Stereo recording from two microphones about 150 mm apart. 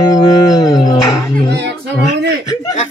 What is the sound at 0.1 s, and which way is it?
Music, 30° left (ahead or behind).